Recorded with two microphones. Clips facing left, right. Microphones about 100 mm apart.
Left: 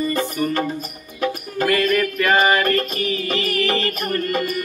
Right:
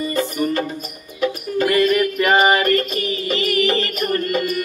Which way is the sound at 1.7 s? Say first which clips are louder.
Right 2 dB; 20° right (ahead or behind).